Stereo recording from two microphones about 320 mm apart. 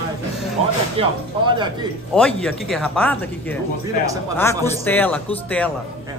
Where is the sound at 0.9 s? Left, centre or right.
Centre.